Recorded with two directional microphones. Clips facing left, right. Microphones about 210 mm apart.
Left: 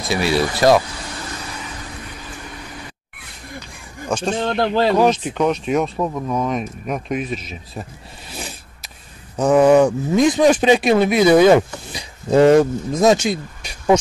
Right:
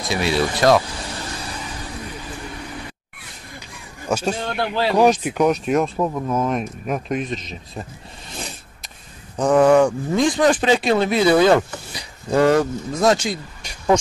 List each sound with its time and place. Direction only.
0.1 s speech: 5° left (ahead or behind)
4.1 s speech: 5° right (ahead or behind)
4.5 s speech: 40° left (ahead or behind)
4.9 s speech: 10° right (ahead or behind); by 7.8 s 5° left (ahead or behind)
8.3 s a sound: 5° left (ahead or behind)
9.4 s speech: 10° left (ahead or behind)